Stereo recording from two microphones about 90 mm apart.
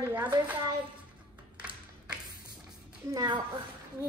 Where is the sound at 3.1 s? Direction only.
50° right (ahead or behind).